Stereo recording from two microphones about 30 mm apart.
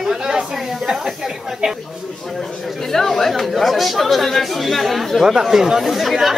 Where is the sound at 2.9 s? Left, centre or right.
Centre.